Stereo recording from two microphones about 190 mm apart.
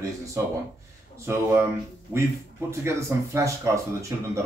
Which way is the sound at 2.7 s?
15° right (ahead or behind).